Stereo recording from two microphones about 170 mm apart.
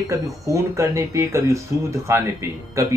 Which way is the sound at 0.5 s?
20° right (ahead or behind).